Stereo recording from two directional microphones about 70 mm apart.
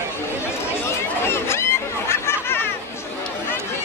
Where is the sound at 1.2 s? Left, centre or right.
Left.